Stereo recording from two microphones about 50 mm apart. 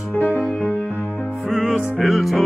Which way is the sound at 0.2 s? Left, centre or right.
Left.